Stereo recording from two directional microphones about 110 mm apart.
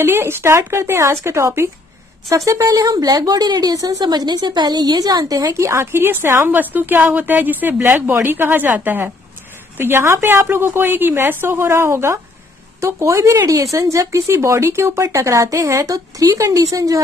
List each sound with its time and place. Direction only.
0.0 s a woman's voice: 20° right (ahead or behind)